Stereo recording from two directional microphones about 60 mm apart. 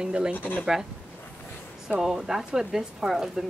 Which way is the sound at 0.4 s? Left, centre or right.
Left.